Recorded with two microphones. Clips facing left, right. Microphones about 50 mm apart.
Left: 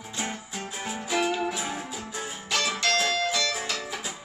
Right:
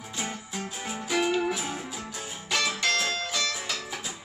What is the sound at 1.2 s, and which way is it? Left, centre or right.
Music, centre.